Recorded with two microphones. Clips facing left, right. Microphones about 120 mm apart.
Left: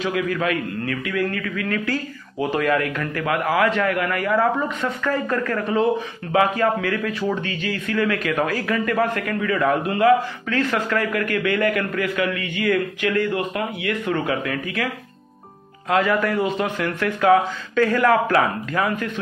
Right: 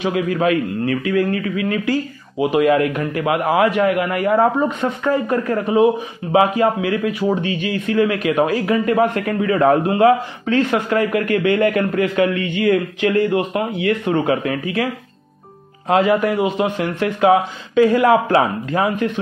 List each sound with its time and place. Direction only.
0.0 s a man's voice: 25° right (ahead or behind)
15.9 s a man's voice: 25° right (ahead or behind)